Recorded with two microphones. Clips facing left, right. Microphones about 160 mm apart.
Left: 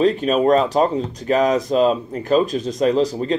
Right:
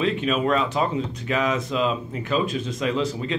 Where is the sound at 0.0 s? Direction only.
40° left (ahead or behind).